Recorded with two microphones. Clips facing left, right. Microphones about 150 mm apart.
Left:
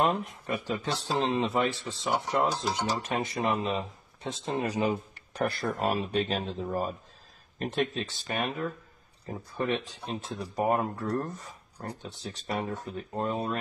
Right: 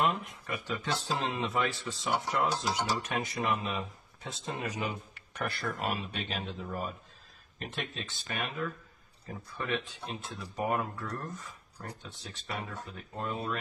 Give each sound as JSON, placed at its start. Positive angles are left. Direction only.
{"t": 0.0, "sound": "speech", "side_deg": 35}